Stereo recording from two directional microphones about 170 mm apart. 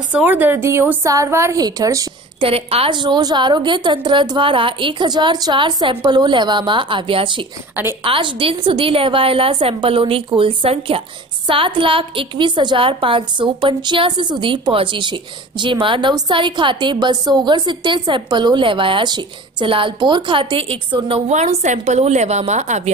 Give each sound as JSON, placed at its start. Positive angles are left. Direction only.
{"t": 0.1, "sound": "a woman's voice", "side_deg": -10}
{"t": 2.4, "sound": "a woman's voice", "side_deg": -35}